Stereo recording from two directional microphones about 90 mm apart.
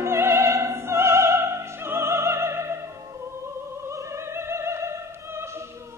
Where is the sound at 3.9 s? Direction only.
30° right (ahead or behind).